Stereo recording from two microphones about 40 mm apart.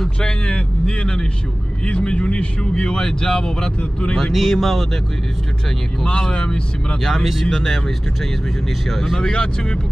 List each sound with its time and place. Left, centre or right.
0.2 s speech: centre
1.9 s speech: left; by 3.6 s centre
3.6 s speech: left
4.2 s speech: centre
6.0 s speech: left; by 9.3 s centre
9.3 s speech: left